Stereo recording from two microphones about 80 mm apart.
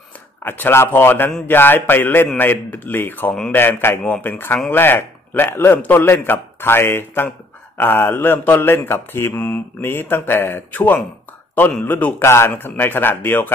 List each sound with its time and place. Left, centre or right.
0.4 s a man's voice: left